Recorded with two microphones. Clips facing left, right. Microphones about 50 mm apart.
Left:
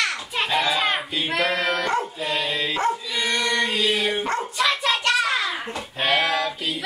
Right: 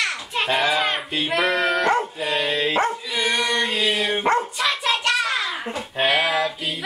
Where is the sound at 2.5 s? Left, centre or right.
Right.